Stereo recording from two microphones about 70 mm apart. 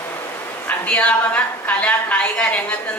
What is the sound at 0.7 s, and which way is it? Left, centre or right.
A woman's voice, left.